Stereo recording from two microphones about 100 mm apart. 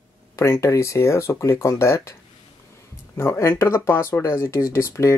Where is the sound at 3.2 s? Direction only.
30° left (ahead or behind).